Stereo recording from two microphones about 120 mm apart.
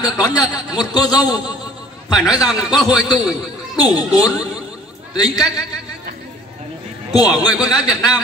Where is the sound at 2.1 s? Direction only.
5° right (ahead or behind).